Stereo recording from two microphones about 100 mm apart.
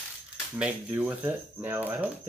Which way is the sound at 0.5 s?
10° right (ahead or behind).